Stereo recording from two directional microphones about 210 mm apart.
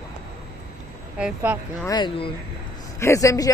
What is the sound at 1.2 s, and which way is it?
Speech, 5° right (ahead or behind).